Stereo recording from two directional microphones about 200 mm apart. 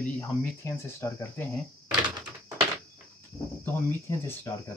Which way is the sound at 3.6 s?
10° left (ahead or behind).